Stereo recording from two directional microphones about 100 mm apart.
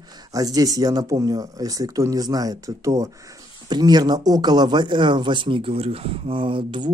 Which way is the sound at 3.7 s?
45° right (ahead or behind).